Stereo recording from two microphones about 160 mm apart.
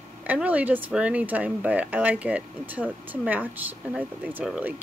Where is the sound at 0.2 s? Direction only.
10° right (ahead or behind).